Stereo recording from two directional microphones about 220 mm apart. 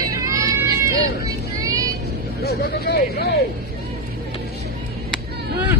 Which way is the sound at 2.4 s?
45° left (ahead or behind).